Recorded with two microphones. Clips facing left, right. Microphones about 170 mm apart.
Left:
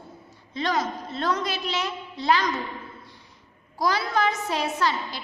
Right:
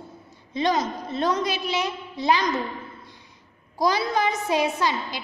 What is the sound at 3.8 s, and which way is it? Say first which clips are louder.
A woman's voice: right 2 dB; 15° right (ahead or behind).